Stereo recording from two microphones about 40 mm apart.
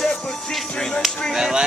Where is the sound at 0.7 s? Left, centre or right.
Centre.